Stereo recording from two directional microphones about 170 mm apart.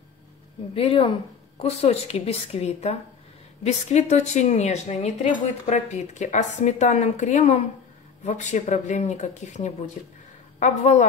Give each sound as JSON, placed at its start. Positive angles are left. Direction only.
{"t": 0.7, "sound": "a woman's voice", "side_deg": 35}